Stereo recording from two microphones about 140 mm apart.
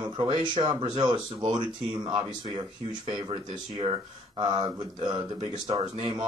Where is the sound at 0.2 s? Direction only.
35° right (ahead or behind).